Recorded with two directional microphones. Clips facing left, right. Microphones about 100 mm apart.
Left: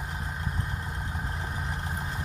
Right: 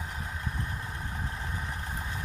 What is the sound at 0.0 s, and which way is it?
Vehicle, 15° left (ahead or behind).